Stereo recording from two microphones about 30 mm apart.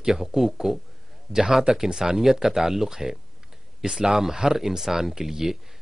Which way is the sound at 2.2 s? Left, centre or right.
Centre.